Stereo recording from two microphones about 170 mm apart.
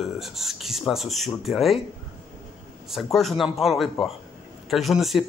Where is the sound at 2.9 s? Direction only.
Centre (ahead or behind).